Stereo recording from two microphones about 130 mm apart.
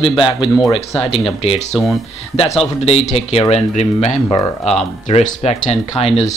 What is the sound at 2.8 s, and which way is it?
Speech, 50° left (ahead or behind).